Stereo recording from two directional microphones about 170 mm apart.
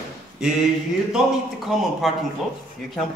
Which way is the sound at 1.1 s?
Centre (ahead or behind).